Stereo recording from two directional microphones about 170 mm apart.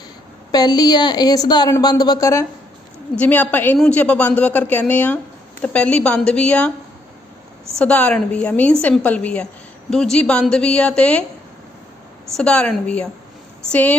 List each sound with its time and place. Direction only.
0.5 s a woman's voice: 25° left (ahead or behind); by 6.7 s 5° left (ahead or behind)
7.8 s a woman's voice: 5° left (ahead or behind)
12.4 s a woman's voice: 5° left (ahead or behind)